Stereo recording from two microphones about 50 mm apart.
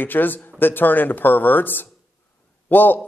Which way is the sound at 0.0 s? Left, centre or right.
Left.